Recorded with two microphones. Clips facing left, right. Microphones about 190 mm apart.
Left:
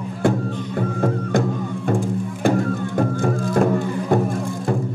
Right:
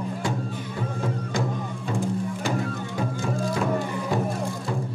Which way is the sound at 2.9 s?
55° left (ahead or behind).